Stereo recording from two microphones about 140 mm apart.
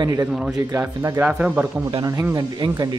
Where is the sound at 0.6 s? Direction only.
20° right (ahead or behind).